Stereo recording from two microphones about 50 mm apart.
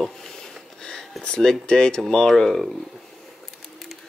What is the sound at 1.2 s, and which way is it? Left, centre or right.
Speech, centre.